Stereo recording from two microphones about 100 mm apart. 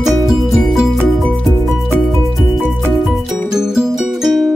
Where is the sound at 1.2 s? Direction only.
5° left (ahead or behind).